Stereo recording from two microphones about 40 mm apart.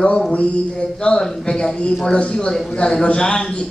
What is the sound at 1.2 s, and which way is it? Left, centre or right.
A man's voice, centre.